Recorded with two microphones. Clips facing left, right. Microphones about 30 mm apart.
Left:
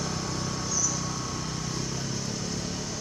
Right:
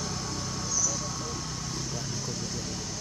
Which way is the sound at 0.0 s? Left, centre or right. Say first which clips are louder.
Left 3 dB; left.